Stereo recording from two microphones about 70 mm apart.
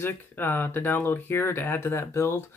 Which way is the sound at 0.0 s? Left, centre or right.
Left.